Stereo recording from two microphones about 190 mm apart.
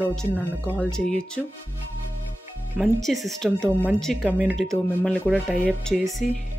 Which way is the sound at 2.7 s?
Centre (ahead or behind).